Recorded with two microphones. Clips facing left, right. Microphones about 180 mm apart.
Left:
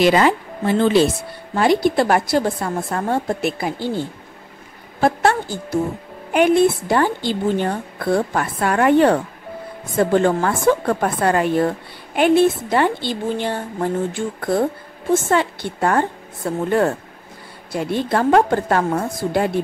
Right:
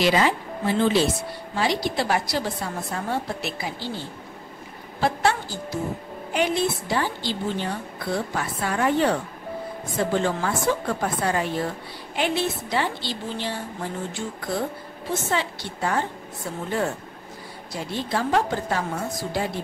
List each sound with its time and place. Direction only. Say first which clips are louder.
0.0 s a woman's voice: left 6 dB; 55° left (ahead or behind)
5.0 s a woman's voice: left 6 dB; 55° left (ahead or behind)